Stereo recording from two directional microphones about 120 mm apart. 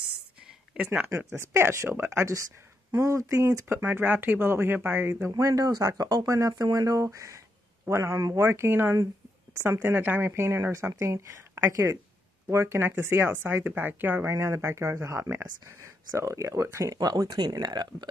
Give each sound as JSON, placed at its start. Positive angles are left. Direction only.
{"t": 0.8, "sound": "speech", "side_deg": -20}
{"t": 5.3, "sound": "speech", "side_deg": -30}